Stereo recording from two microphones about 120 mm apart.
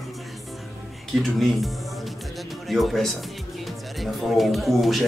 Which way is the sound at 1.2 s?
Centre (ahead or behind).